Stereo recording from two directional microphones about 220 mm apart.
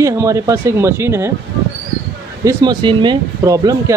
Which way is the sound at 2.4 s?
20° right (ahead or behind).